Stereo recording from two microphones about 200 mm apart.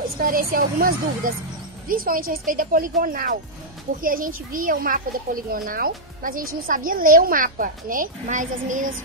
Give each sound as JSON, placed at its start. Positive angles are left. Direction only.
{"t": 0.2, "sound": "speech", "side_deg": -45}